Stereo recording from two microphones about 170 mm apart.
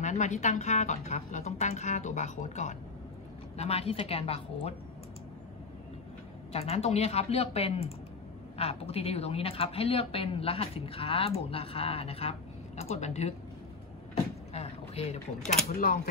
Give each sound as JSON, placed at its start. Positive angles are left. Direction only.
{"t": 0.0, "sound": "a woman's voice", "side_deg": 45}
{"t": 6.5, "sound": "speech", "side_deg": 35}
{"t": 14.5, "sound": "a sound", "side_deg": 40}
{"t": 15.7, "sound": "speech", "side_deg": 55}